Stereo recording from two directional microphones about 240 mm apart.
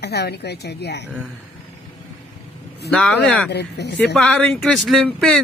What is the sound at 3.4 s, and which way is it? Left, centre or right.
Speech, left.